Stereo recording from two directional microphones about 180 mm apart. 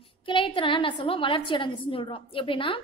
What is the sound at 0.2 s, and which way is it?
A woman's voice, 30° left (ahead or behind).